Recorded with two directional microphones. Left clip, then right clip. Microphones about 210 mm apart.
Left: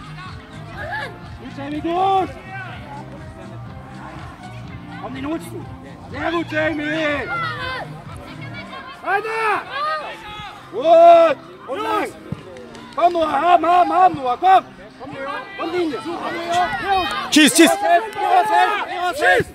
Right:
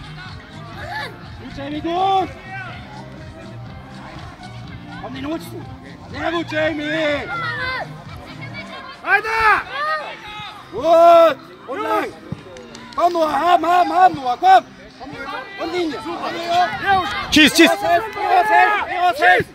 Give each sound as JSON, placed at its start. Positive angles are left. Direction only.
{"t": 0.8, "sound": "music", "side_deg": -50}
{"t": 1.6, "sound": "speech", "side_deg": -25}
{"t": 5.0, "sound": "speech", "side_deg": -25}
{"t": 9.0, "sound": "speech", "side_deg": -20}
{"t": 9.8, "sound": "a sound", "side_deg": -45}
{"t": 10.8, "sound": "speech", "side_deg": -45}
{"t": 12.9, "sound": "speech", "side_deg": -50}
{"t": 16.8, "sound": "speech", "side_deg": -25}
{"t": 17.3, "sound": "a man's voice", "side_deg": 5}
{"t": 17.8, "sound": "speech", "side_deg": -50}